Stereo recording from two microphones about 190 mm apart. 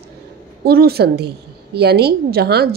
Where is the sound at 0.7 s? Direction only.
55° right (ahead or behind).